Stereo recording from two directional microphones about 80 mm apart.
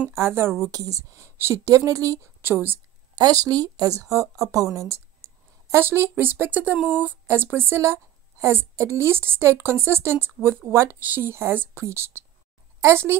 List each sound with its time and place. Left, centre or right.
0.1 s a woman's voice: right
0.7 s speech: right
2.4 s speech: right
3.2 s a woman's voice: right
11.0 s a woman's voice: right